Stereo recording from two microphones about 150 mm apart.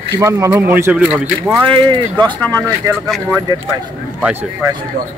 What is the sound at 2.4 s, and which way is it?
Speech, 15° left (ahead or behind).